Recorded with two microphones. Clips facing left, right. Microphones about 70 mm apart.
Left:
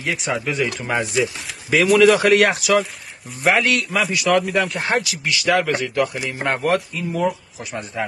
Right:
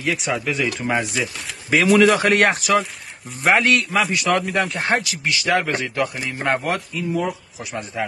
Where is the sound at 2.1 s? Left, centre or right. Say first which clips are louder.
Left 2 dB; right.